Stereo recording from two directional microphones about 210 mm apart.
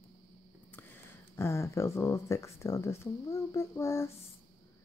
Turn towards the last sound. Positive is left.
turn(degrees=15)  # may be behind; listen again after turning